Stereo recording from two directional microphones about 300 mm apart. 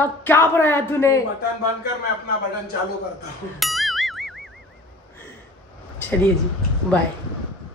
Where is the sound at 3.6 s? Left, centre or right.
Centre.